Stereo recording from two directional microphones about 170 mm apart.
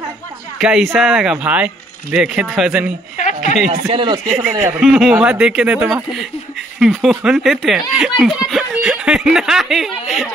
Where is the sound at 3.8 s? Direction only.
35° right (ahead or behind).